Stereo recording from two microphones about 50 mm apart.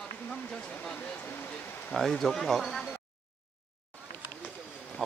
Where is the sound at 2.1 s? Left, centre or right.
Centre.